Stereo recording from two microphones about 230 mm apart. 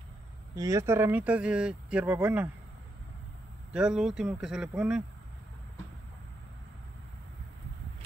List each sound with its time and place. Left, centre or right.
0.6 s speech: centre
3.7 s speech: centre